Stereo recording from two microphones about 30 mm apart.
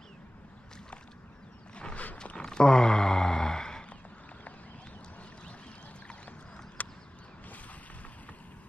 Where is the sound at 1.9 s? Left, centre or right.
Left.